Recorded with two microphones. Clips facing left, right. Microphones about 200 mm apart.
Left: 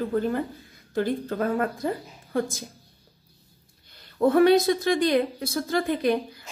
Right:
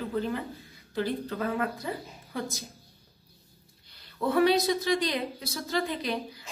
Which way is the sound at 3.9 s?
50° left (ahead or behind).